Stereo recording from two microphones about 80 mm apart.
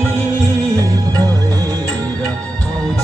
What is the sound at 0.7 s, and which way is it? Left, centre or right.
Music, right.